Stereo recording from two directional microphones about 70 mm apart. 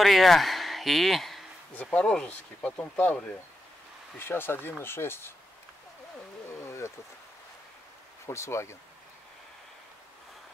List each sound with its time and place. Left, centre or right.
0.0 s speech: centre
1.8 s speech: centre
4.2 s speech: left
6.5 s a sound: left
8.3 s speech: left